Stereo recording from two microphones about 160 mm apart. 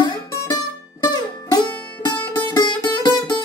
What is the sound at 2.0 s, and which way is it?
Music, 30° left (ahead or behind).